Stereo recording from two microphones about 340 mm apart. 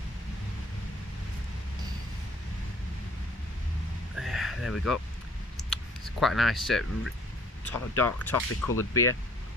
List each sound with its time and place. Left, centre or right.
4.2 s a sound: centre
5.6 s clicking: centre
6.1 s speech: centre
7.9 s speech: centre